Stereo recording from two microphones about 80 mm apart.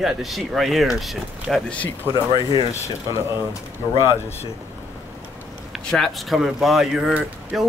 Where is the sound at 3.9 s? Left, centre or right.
Left.